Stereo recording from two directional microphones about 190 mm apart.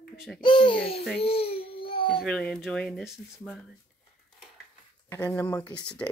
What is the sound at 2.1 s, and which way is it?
Speech, 5° left (ahead or behind).